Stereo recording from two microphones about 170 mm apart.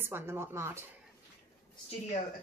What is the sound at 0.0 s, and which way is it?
Speech, 15° right (ahead or behind).